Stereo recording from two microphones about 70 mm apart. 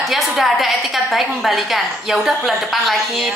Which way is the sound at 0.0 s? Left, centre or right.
Centre.